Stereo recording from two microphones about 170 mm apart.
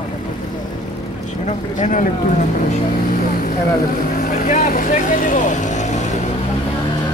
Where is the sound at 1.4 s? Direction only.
45° left (ahead or behind).